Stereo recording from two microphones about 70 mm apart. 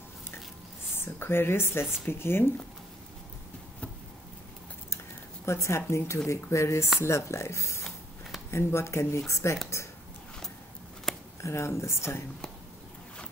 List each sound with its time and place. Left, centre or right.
0.9 s speech: left
5.4 s speech: left
11.1 s a sound: centre
11.4 s speech: left